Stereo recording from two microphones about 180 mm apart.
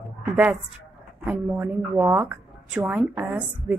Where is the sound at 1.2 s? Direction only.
10° right (ahead or behind).